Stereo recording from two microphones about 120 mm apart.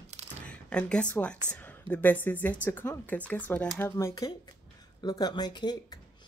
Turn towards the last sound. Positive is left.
turn(degrees=35)  # may be behind; listen again after turning